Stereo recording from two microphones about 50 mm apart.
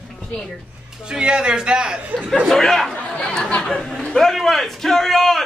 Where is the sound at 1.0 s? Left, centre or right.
Centre.